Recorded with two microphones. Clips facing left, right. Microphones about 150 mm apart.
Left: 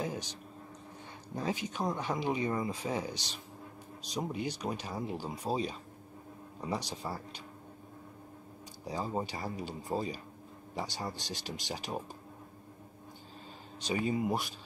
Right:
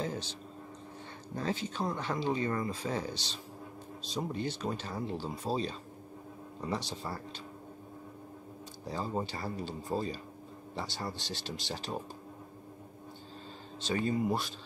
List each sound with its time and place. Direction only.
0.0 s a sound: 15° left (ahead or behind)
1.3 s speech: 15° left (ahead or behind)
8.8 s speech: 10° left (ahead or behind)
13.8 s speech: 10° left (ahead or behind)